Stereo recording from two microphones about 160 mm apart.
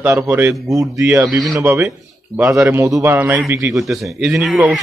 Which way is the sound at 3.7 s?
Centre (ahead or behind).